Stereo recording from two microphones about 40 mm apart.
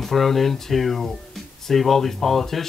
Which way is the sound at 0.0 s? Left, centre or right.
Centre.